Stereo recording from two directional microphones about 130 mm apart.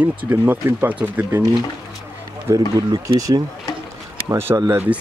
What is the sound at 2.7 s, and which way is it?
Speech, 30° right (ahead or behind).